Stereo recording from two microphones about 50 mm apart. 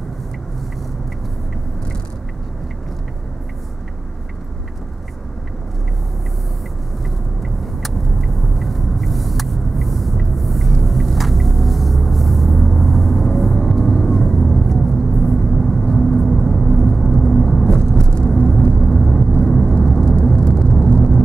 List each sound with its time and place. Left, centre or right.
7.1 s vehicle: centre